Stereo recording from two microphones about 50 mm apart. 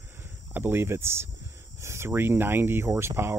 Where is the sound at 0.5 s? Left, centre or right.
Right.